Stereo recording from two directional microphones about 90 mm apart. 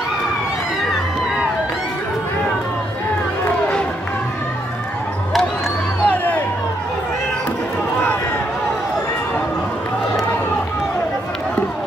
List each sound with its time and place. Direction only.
6.0 s crowd: 20° left (ahead or behind)